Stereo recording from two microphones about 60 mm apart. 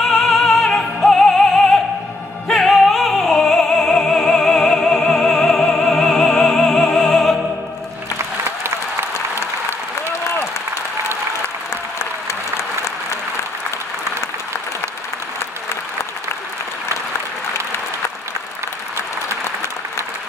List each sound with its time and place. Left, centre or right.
0.0 s music: centre
2.4 s music: centre
7.1 s opera: centre
8.2 s applause: right
12.0 s applause: left